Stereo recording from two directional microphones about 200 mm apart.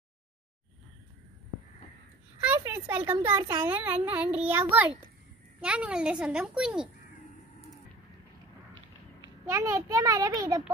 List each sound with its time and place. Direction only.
2.4 s a sound: 10° right (ahead or behind)
3.1 s a child's voice: 10° right (ahead or behind)
9.5 s a child's voice: 15° right (ahead or behind)